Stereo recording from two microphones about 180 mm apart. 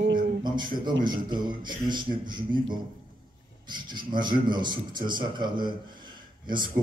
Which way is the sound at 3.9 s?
25° right (ahead or behind).